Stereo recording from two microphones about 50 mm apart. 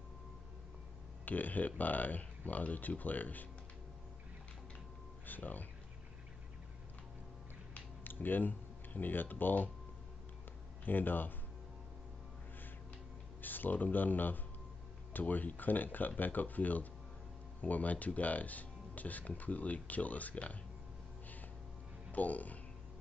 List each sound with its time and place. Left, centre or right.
1.2 s speech: left
5.2 s speech: left
7.7 s a sound: left
10.9 s speech: left
13.4 s speech: left
22.1 s speech: left